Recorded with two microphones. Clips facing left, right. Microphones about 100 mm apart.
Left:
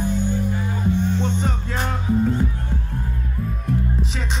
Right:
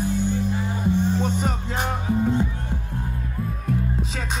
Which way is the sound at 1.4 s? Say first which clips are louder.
Even; 15° right (ahead or behind).